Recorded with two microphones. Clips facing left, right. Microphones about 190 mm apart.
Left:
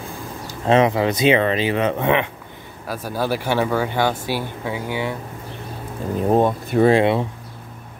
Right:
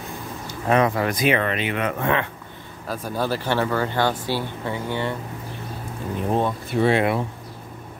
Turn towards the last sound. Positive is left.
turn(degrees=45)  # may be behind; listen again after turning